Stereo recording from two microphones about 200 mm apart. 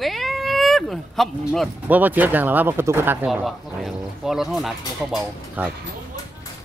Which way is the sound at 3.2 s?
Centre (ahead or behind).